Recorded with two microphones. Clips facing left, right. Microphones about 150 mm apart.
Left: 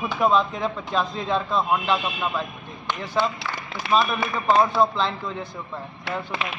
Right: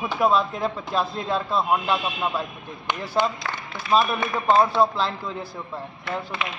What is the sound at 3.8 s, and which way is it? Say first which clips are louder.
Speech: right 1 dB; 75° left (ahead or behind).